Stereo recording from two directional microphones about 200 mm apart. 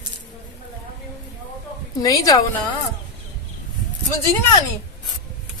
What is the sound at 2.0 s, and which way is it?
Speech, 15° left (ahead or behind).